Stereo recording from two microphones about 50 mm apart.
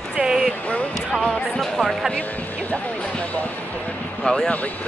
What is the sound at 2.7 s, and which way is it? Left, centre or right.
Speech, left.